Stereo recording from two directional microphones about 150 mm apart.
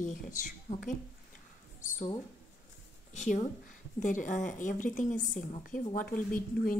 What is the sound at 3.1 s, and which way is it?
A woman's voice, 55° left (ahead or behind).